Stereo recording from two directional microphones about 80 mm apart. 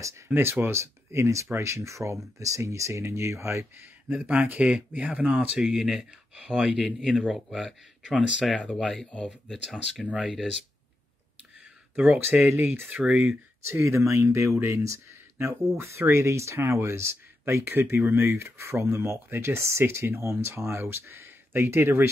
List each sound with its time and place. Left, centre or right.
0.3 s speech: right
4.1 s speech: centre
5.6 s speech: centre
7.0 s speech: centre
8.2 s speech: centre
8.6 s speech: centre
11.9 s speech: centre
12.4 s speech: right
13.0 s speech: centre
13.8 s speech: right